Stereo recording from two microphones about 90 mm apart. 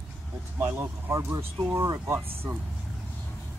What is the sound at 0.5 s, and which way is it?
Speech, 25° right (ahead or behind).